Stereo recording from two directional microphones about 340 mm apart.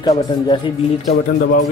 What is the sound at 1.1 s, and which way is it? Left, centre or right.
Speech, left.